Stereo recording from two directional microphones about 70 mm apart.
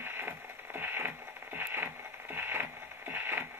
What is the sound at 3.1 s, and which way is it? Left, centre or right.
Radio, right.